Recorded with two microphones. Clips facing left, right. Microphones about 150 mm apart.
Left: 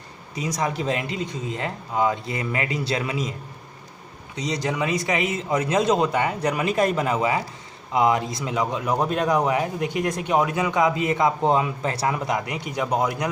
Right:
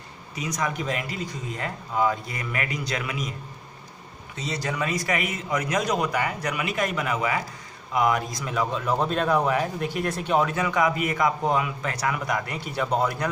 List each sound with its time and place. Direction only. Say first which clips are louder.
0.4 s a man's voice: left 3 dB; 30° left (ahead or behind)
4.4 s a man's voice: left 4 dB; 20° left (ahead or behind)